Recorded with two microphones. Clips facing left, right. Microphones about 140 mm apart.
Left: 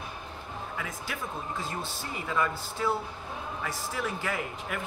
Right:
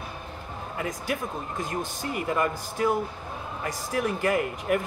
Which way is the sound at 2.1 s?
50° right (ahead or behind).